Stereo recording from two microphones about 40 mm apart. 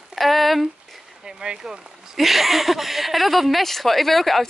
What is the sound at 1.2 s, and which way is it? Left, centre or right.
Speech, right.